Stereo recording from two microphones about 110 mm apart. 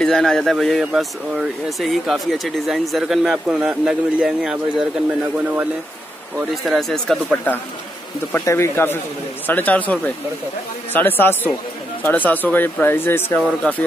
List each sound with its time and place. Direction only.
0.0 s speech: 5° left (ahead or behind)
6.3 s speech: centre (ahead or behind)
8.3 s speech: 25° left (ahead or behind)